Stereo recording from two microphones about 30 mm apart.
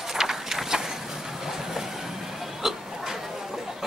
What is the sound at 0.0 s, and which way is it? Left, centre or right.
Vehicle, centre.